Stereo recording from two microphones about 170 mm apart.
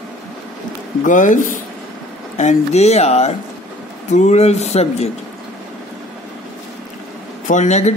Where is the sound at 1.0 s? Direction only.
50° left (ahead or behind).